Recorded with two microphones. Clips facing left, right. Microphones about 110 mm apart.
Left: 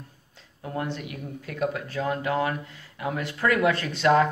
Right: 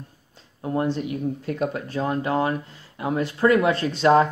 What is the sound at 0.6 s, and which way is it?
Speech, 30° right (ahead or behind).